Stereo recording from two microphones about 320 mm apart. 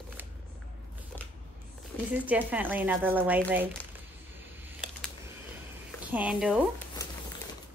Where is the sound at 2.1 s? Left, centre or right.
Centre.